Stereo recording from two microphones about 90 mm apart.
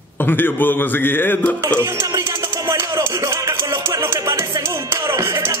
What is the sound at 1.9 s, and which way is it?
Music, 50° right (ahead or behind).